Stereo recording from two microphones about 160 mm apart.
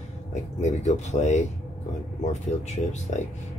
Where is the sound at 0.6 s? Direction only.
45° left (ahead or behind).